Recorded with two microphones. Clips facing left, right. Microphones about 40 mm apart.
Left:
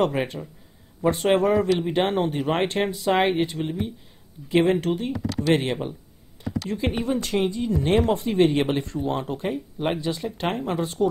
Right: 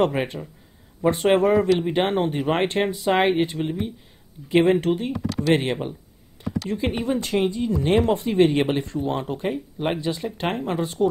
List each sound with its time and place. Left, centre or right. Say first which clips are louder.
0.0 s speech: right 1 dB; centre